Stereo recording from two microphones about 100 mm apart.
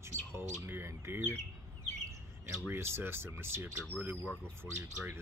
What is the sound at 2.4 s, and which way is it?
Speech, 25° right (ahead or behind).